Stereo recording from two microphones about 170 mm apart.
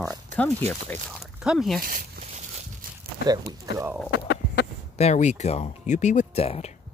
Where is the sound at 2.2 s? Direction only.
40° right (ahead or behind).